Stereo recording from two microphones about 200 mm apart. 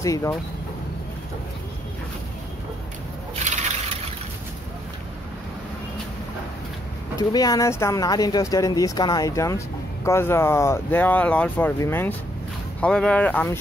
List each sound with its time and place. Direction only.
0.0 s speech: 15° left (ahead or behind)
7.2 s speech: 20° left (ahead or behind)